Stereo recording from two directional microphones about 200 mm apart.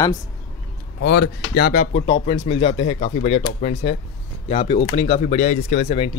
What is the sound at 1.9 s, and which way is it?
Speech, 30° left (ahead or behind).